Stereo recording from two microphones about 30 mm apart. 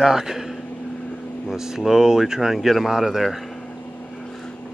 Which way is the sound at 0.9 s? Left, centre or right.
Left.